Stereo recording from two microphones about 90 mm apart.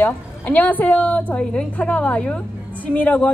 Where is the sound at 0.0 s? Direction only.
20° left (ahead or behind).